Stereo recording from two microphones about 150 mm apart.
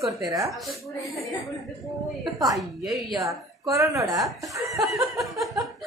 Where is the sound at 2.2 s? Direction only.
25° right (ahead or behind).